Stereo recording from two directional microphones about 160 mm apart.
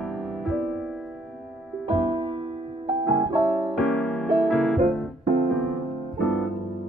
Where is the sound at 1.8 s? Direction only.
30° right (ahead or behind).